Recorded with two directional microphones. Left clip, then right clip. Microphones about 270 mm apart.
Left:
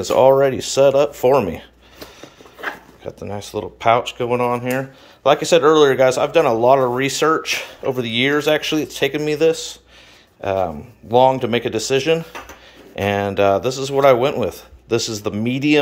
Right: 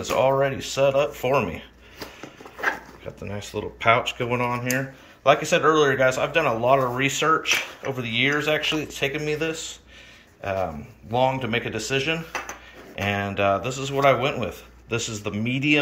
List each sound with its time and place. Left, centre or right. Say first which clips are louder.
0.1 s speech: left 8 dB; left